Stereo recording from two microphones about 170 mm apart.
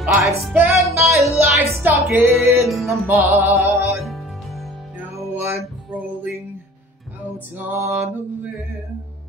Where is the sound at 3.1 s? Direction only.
10° right (ahead or behind).